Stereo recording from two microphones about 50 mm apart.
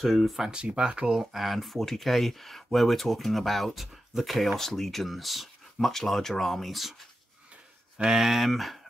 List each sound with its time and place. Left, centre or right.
0.0 s speech: centre
0.4 s speech: centre
1.4 s speech: centre
8.1 s speech: centre